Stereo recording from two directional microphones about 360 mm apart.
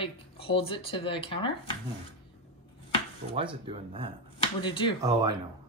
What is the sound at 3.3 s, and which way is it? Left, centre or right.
Speech, centre.